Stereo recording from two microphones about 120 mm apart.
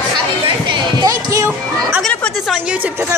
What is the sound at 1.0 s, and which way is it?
Music, 25° right (ahead or behind).